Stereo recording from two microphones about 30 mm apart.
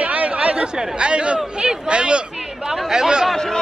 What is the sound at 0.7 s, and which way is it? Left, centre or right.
Speech, right.